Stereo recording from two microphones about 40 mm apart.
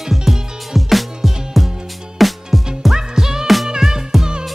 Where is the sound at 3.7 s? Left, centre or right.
Centre.